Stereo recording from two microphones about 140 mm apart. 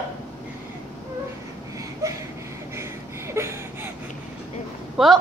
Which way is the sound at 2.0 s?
20° right (ahead or behind).